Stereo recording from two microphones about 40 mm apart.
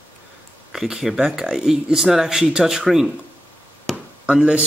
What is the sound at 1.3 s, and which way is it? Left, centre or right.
Speech, centre.